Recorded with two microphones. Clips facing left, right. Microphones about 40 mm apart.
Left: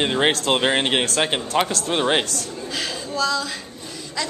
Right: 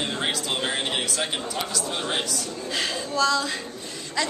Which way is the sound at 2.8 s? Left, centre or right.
Centre.